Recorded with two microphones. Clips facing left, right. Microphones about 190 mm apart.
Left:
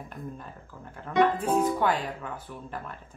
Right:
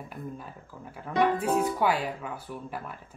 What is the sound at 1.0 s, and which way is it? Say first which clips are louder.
Speech: left 1 dB; 10° right (ahead or behind).